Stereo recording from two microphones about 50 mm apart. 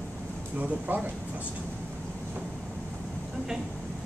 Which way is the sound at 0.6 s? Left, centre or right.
Right.